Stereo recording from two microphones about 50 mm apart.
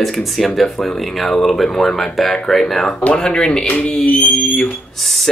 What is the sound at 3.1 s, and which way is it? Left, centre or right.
Speech, centre.